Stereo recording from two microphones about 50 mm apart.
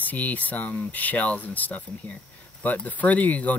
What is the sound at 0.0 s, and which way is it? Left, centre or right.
Speech, left.